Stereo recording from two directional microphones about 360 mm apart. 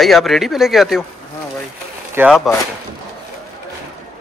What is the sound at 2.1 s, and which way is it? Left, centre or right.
Speech, centre.